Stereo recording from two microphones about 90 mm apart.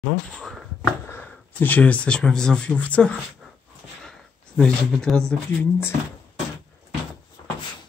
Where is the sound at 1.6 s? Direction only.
15° left (ahead or behind).